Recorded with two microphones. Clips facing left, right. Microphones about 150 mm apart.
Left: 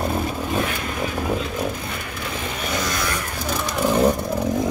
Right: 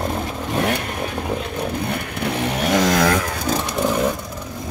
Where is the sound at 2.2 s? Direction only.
70° right (ahead or behind); by 3.2 s 90° right.